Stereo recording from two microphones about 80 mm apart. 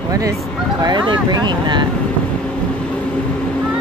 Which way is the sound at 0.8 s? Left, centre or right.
Right.